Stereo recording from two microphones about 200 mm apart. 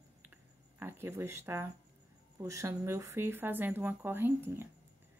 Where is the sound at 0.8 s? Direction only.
15° right (ahead or behind).